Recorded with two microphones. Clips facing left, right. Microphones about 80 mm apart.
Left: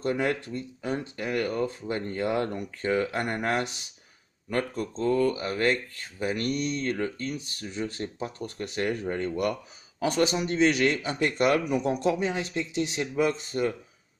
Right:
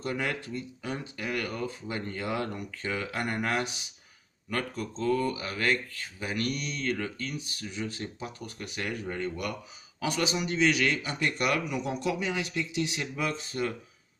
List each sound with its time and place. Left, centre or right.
0.0 s speech: left
8.6 s speech: left